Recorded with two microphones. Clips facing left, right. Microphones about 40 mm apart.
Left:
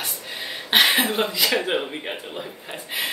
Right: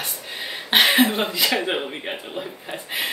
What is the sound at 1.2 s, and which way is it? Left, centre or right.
Speech, centre.